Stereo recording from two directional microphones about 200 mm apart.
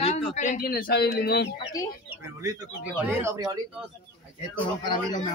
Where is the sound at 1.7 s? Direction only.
20° left (ahead or behind).